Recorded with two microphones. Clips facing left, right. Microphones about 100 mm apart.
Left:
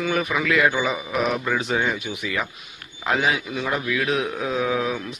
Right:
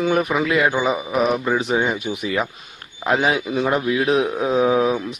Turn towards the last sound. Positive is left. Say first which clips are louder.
# right 6 dB
turn(degrees=-25)  # may be behind; listen again after turning